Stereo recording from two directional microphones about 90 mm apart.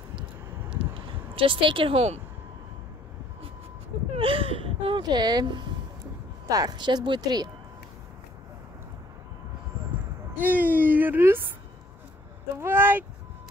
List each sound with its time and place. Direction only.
0.9 s a sound: 75° right (ahead or behind)
4.2 s speech: 90° right
5.0 s speech: 50° right (ahead or behind)
10.4 s speech: 20° right (ahead or behind)
12.5 s speech: 25° right (ahead or behind)